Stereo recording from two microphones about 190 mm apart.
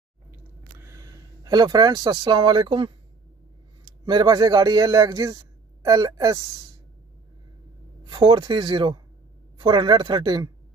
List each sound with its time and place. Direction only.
0.3 s a sound: 15° right (ahead or behind)
3.8 s a man's voice: 25° right (ahead or behind)
8.1 s speech: 25° right (ahead or behind)